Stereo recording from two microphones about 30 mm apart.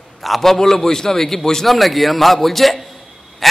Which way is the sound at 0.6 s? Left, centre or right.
Centre.